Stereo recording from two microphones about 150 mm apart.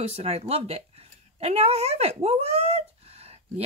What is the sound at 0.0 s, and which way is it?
Speech, 45° right (ahead or behind).